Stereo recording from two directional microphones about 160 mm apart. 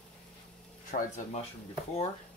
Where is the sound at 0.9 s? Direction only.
50° left (ahead or behind).